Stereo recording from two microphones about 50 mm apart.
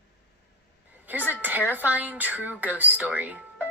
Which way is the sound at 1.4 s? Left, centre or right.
Right.